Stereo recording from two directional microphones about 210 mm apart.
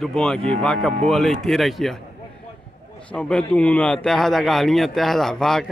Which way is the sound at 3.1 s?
5° left (ahead or behind).